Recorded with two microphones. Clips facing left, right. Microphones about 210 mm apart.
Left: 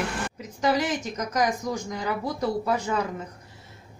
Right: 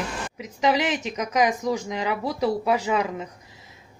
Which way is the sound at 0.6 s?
90° right.